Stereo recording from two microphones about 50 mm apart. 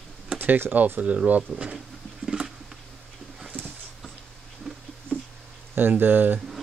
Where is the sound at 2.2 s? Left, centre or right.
Centre.